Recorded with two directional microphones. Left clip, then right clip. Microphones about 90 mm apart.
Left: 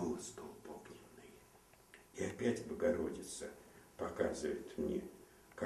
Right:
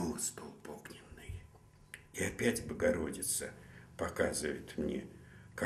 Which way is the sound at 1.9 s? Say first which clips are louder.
Right 4 dB; 30° right (ahead or behind).